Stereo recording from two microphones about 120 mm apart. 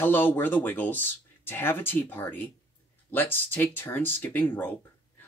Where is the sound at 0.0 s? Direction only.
15° left (ahead or behind).